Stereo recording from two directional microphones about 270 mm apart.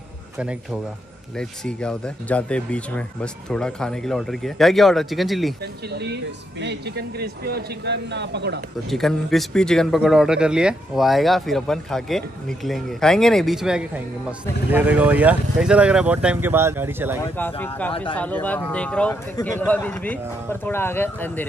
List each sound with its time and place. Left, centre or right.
0.4 s speech: centre
5.9 s speech: right
8.9 s speech: centre
17.2 s speech: centre